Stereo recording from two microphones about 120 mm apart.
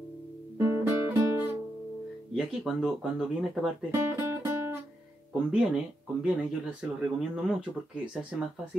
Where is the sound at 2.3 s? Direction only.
Centre (ahead or behind).